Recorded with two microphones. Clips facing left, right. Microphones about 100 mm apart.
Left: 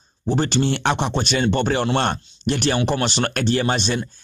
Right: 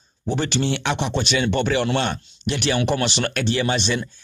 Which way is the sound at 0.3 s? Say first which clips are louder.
Left 2 dB; 35° left (ahead or behind).